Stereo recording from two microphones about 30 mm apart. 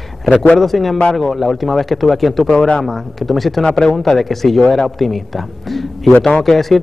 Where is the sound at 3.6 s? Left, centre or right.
Left.